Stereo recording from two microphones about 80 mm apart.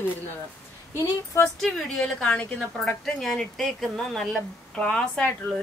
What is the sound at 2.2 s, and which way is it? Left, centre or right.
A woman's voice, centre.